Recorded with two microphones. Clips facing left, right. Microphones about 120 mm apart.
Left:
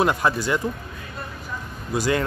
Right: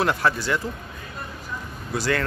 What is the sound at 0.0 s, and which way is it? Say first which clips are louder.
Speech: left 2 dB; 15° left (ahead or behind).